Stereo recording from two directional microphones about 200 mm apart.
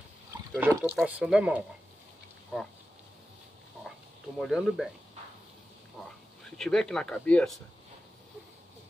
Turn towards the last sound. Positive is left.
turn(degrees=5)  # may be behind; listen again after turning